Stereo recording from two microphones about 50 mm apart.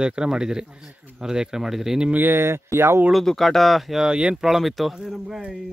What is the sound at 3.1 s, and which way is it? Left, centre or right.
Speech, centre.